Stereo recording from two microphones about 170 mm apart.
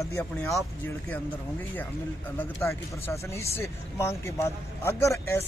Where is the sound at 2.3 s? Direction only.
15° left (ahead or behind).